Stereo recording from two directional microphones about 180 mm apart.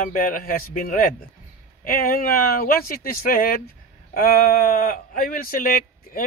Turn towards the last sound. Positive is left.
turn(degrees=50)  # may be behind; listen again after turning